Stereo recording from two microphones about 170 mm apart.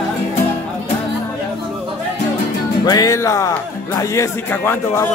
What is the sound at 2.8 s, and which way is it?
A man's voice, 20° left (ahead or behind).